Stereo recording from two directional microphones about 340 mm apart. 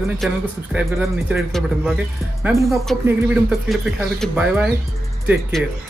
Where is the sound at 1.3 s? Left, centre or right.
Centre.